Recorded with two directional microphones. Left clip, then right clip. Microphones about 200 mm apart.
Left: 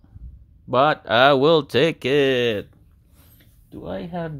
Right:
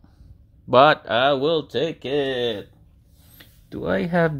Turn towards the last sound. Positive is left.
turn(degrees=-35)  # may be behind; listen again after turning